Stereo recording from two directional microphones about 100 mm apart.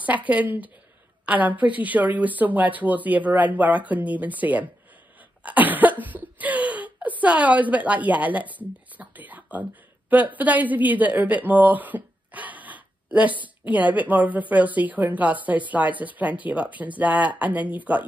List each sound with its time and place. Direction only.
0.0 s a woman's voice: 15° right (ahead or behind)
5.4 s cough: 15° right (ahead or behind)
13.4 s a woman's voice: 15° right (ahead or behind)